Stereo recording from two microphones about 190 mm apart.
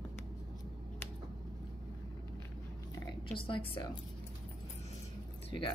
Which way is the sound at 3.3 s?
25° left (ahead or behind).